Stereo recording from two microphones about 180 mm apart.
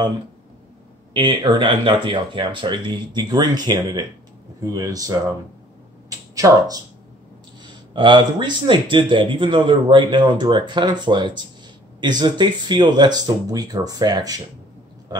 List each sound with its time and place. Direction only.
1.1 s speech: 25° right (ahead or behind)
7.9 s speech: 25° right (ahead or behind)